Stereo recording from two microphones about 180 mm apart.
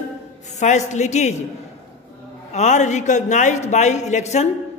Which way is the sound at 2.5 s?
40° left (ahead or behind).